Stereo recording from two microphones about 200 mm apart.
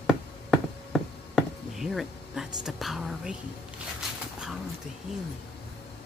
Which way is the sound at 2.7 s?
Centre (ahead or behind).